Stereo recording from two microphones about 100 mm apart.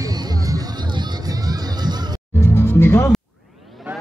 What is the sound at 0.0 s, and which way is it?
Music, 40° right (ahead or behind).